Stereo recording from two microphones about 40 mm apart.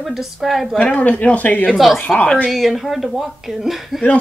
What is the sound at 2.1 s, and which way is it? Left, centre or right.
Speech, left.